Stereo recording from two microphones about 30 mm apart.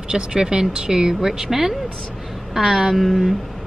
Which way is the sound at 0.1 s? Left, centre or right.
Right.